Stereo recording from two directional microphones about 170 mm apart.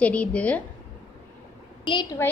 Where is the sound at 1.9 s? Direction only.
25° left (ahead or behind).